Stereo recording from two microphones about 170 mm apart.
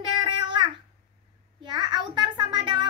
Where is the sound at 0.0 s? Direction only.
30° right (ahead or behind).